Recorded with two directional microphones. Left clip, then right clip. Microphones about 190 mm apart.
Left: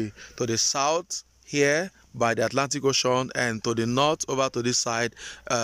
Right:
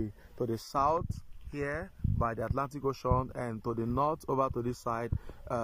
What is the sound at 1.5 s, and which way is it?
Speech, 35° left (ahead or behind).